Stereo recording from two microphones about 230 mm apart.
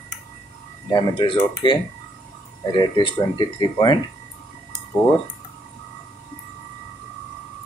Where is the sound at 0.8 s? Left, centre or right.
Centre.